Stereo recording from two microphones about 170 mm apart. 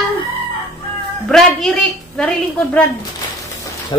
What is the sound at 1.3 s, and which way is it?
A woman's voice, centre (ahead or behind).